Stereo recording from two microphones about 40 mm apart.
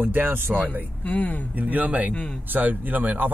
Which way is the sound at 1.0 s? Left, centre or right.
Left.